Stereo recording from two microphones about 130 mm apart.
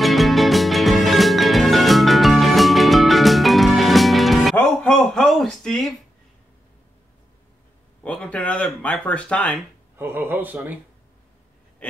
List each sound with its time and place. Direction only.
0.0 s music: centre (ahead or behind)
4.6 s a sound: 5° left (ahead or behind)
8.0 s speech: 10° left (ahead or behind)
9.9 s speech: 15° right (ahead or behind)